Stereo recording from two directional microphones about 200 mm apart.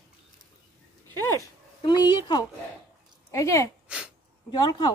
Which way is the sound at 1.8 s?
20° left (ahead or behind).